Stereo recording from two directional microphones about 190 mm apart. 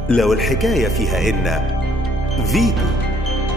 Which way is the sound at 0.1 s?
Centre (ahead or behind).